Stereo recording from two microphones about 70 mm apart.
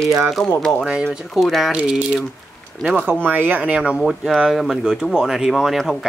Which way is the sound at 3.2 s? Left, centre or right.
Right.